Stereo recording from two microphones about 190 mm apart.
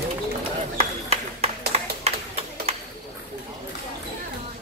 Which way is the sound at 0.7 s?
35° right (ahead or behind).